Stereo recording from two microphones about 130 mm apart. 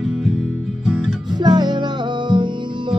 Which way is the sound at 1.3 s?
35° right (ahead or behind).